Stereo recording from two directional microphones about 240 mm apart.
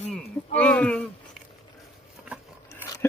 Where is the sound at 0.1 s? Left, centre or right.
Centre.